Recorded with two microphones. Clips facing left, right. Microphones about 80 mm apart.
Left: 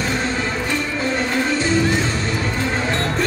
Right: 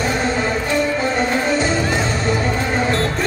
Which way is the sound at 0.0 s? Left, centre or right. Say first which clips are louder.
Right 3 dB; right.